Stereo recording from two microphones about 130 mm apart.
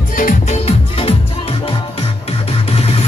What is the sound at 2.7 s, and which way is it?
Music, 50° left (ahead or behind).